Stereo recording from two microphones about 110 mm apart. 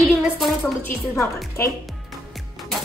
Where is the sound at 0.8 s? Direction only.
20° left (ahead or behind).